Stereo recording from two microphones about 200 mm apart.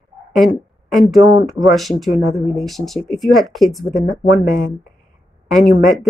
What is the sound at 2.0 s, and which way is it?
A woman's voice, centre (ahead or behind).